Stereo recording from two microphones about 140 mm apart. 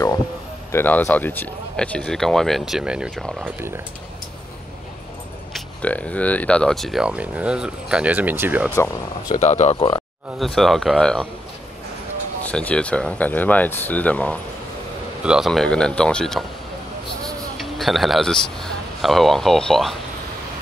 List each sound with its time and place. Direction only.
0.7 s speech: 15° left (ahead or behind); by 3.4 s 5° right (ahead or behind)
5.5 s speech: 10° left (ahead or behind); by 8.7 s 15° right (ahead or behind)
9.4 s speech: 55° left (ahead or behind)
9.8 s speech: 40° left (ahead or behind)
10.4 s speech: centre (ahead or behind)
12.4 s speech: 10° left (ahead or behind)
15.2 s speech: 5° right (ahead or behind)
17.6 s a man's voice: centre (ahead or behind)